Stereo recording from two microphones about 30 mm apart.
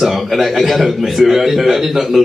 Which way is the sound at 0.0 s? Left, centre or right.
Centre.